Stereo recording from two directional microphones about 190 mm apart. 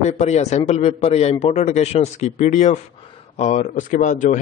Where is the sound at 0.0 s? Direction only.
35° left (ahead or behind).